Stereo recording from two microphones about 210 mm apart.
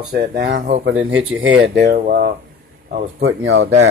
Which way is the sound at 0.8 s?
60° right (ahead or behind).